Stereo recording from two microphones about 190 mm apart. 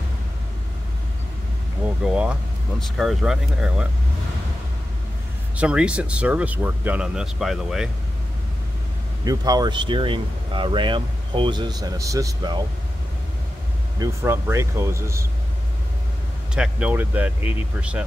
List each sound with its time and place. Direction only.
2.0 s speech: 5° right (ahead or behind)
5.6 s speech: 5° right (ahead or behind)
9.2 s speech: 20° right (ahead or behind)
13.9 s speech: 15° right (ahead or behind)
16.5 s speech: 5° right (ahead or behind)